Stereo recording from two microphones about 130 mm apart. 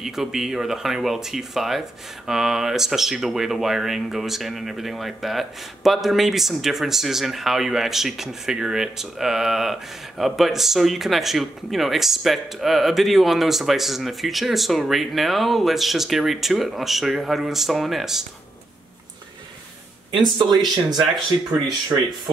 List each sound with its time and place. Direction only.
0.0 s speech: centre (ahead or behind)
20.1 s speech: 35° right (ahead or behind)